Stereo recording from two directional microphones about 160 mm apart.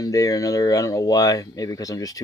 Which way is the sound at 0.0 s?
20° left (ahead or behind).